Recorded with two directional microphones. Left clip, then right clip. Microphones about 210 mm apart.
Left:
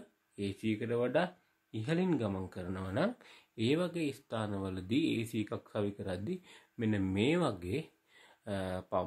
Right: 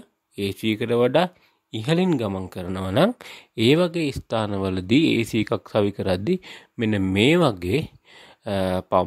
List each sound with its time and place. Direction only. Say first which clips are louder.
0.4 s speech: right 12 dB; 50° right (ahead or behind)